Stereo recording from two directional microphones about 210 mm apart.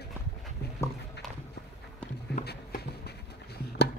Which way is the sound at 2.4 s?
50° left (ahead or behind).